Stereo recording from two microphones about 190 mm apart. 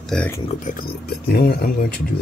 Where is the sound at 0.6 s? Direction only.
45° left (ahead or behind).